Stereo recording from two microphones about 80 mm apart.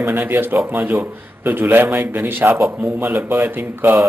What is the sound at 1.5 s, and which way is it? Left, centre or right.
A man's voice, right.